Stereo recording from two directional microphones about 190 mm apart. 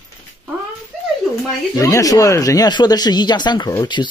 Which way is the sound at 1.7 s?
15° left (ahead or behind).